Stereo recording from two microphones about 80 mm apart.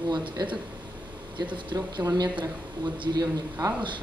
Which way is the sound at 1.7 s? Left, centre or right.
Right.